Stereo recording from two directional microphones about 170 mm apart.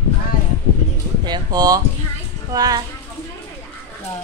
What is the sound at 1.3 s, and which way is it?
Speech, 25° right (ahead or behind).